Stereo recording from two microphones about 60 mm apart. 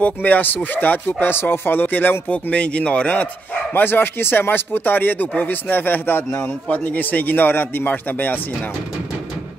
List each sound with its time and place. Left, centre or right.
0.0 s speech: left
3.7 s speech: left